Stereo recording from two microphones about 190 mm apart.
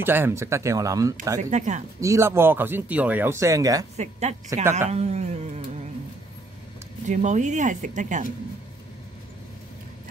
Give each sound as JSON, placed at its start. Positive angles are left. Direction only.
{"t": 0.0, "sound": "speech", "side_deg": -10}
{"t": 1.5, "sound": "speech", "side_deg": -40}
{"t": 2.0, "sound": "speech", "side_deg": -15}
{"t": 3.9, "sound": "speech", "side_deg": -35}
{"t": 7.1, "sound": "speech", "side_deg": -40}